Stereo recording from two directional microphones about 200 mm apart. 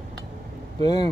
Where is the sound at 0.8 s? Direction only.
20° left (ahead or behind).